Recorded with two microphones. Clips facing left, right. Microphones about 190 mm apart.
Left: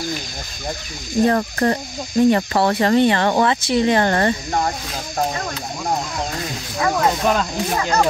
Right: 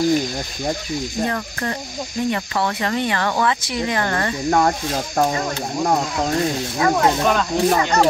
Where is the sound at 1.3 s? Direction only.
40° left (ahead or behind).